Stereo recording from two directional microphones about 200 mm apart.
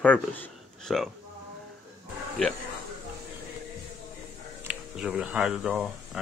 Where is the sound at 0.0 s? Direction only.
5° left (ahead or behind).